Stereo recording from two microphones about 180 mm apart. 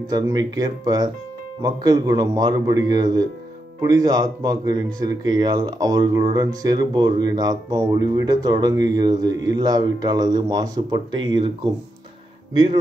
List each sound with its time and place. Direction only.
0.0 s speech: 20° right (ahead or behind)